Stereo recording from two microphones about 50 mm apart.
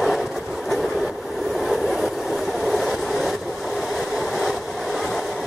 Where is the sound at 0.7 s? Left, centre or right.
Centre.